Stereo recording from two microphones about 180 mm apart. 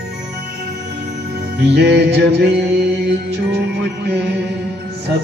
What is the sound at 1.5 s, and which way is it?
Music, 65° right (ahead or behind).